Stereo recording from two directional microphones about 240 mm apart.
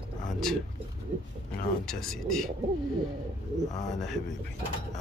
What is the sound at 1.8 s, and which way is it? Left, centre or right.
Speech, centre.